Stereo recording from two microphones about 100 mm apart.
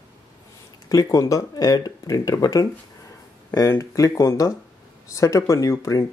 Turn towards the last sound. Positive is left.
turn(degrees=35)  # may be behind; listen again after turning